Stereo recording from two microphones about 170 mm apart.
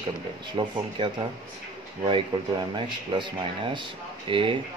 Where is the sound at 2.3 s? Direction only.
25° right (ahead or behind).